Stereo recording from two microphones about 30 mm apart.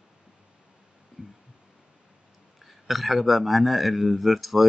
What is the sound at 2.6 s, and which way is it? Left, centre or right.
Speech, centre.